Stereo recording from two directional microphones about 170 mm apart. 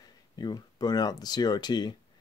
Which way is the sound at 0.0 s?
25° left (ahead or behind).